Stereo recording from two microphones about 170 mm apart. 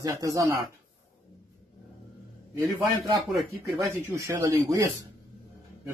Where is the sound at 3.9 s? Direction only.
15° right (ahead or behind).